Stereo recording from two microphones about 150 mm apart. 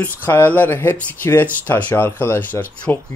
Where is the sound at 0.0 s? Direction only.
15° left (ahead or behind).